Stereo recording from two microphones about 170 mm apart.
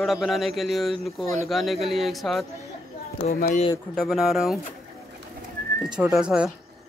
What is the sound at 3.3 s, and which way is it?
Speech, 50° left (ahead or behind).